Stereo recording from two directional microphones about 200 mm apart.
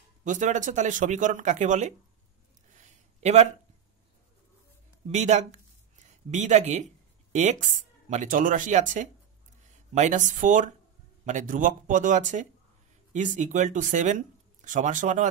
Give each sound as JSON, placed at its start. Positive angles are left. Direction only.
{"t": 0.2, "sound": "speech", "side_deg": -40}
{"t": 2.8, "sound": "a sound", "side_deg": -35}
{"t": 5.1, "sound": "speech", "side_deg": -35}
{"t": 8.1, "sound": "speech", "side_deg": -40}